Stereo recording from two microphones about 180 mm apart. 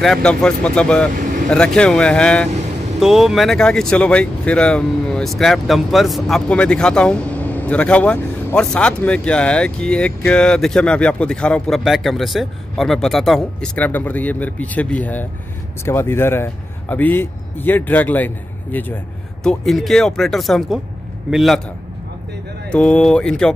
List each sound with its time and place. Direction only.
0.0 s speech: 5° left (ahead or behind)
1.1 s vehicle: 50° right (ahead or behind)
1.5 s a man's voice: 5° left (ahead or behind)
22.7 s speech: 5° left (ahead or behind)